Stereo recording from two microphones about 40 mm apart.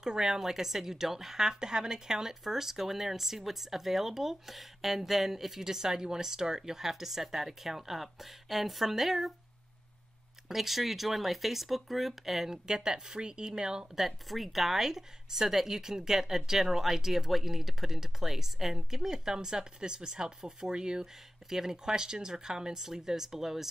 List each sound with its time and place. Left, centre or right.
0.0 s a woman's voice: centre
10.5 s speech: centre
12.6 s a woman's voice: centre
13.9 s a woman's voice: centre